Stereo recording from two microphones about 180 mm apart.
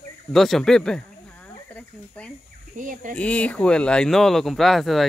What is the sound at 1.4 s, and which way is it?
Cricket, 10° left (ahead or behind).